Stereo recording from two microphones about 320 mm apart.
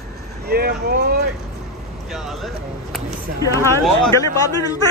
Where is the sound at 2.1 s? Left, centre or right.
Centre.